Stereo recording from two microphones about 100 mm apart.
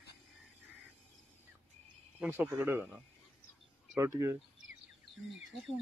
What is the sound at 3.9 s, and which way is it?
Speech, 30° right (ahead or behind).